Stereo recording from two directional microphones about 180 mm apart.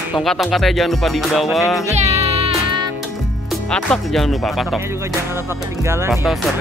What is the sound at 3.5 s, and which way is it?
Speech, 5° left (ahead or behind).